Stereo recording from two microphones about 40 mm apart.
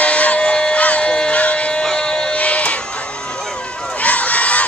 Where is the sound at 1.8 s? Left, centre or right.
Left.